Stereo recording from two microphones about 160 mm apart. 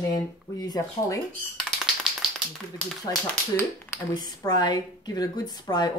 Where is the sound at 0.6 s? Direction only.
25° left (ahead or behind).